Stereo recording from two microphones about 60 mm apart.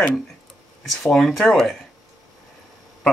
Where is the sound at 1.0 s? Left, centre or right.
Centre.